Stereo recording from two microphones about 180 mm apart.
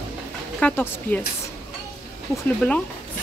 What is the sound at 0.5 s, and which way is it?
Speech, 10° left (ahead or behind).